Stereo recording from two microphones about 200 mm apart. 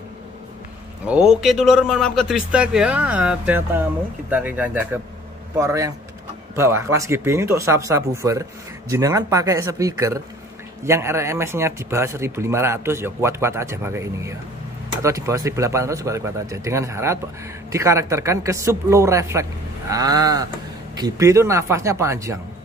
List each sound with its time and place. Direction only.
1.0 s a man's voice: 5° right (ahead or behind)
19.9 s a sound: 20° right (ahead or behind)
20.9 s speech: 20° right (ahead or behind)